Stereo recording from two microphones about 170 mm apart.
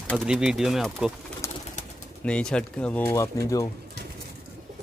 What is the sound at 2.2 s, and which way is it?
Speech, 5° left (ahead or behind).